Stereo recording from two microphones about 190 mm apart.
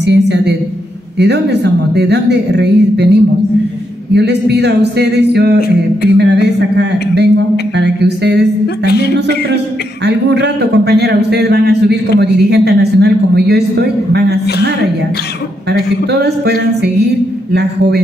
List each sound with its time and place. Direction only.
0.0 s a sound: 65° right (ahead or behind)
1.1 s a man's voice: 60° right (ahead or behind)
8.8 s speech: 60° left (ahead or behind)
10.0 s a man's voice: 60° right (ahead or behind)
16.1 s a man's voice: 60° right (ahead or behind)